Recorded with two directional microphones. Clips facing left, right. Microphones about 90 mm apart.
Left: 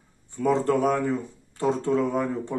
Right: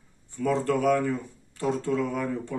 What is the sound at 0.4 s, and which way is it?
Speech, 25° left (ahead or behind).